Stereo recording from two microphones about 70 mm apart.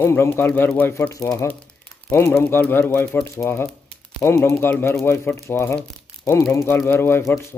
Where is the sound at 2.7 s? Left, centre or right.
Left.